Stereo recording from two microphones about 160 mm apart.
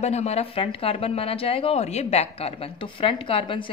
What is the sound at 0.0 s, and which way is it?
Speech, 45° left (ahead or behind).